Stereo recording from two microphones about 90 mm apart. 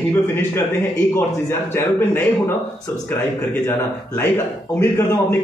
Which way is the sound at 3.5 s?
20° left (ahead or behind).